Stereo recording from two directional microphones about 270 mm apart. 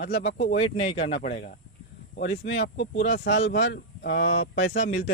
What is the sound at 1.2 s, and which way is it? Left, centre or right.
Speech, left.